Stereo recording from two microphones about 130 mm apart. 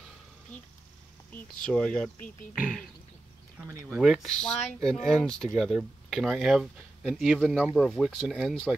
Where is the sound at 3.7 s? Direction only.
20° right (ahead or behind).